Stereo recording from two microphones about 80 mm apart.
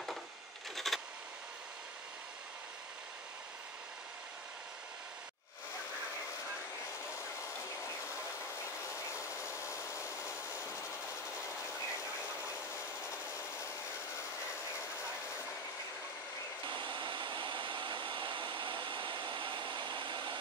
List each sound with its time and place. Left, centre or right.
0.7 s a sound: centre
9.5 s wood: left
16.6 s hair dryer: right